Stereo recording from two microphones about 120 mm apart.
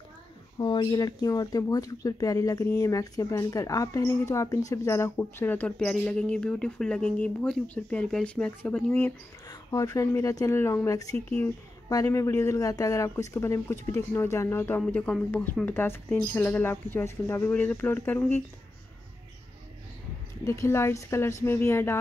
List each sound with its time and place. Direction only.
0.6 s speech: 40° left (ahead or behind); by 9.1 s 10° left (ahead or behind)
9.5 s speech: 30° left (ahead or behind)
11.1 s speech: 10° left (ahead or behind)
11.9 s speech: 30° left (ahead or behind)
14.8 s speech: 10° left (ahead or behind)
20.4 s speech: 25° left (ahead or behind)